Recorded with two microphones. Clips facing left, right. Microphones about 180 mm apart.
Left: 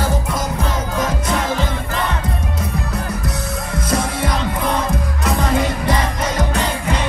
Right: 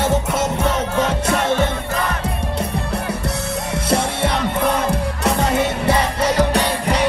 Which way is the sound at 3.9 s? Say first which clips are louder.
Right 1 dB; 30° right (ahead or behind).